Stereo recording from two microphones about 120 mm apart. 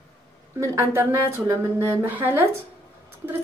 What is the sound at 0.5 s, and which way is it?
A woman's voice, 20° right (ahead or behind).